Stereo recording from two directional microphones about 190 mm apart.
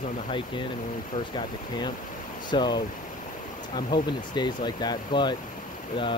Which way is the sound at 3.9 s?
20° left (ahead or behind).